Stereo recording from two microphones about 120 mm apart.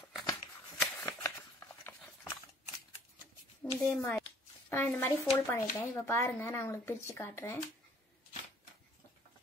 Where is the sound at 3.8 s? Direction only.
25° left (ahead or behind).